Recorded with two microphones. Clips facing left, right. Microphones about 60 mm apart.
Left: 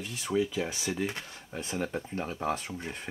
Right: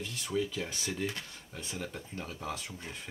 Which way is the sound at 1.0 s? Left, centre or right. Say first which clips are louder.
Left 3 dB; left.